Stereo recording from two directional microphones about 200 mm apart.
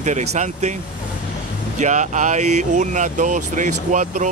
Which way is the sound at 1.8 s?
35° right (ahead or behind).